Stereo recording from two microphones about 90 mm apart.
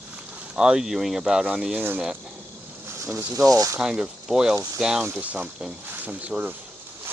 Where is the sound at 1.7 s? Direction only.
25° right (ahead or behind); by 3.8 s 40° right (ahead or behind).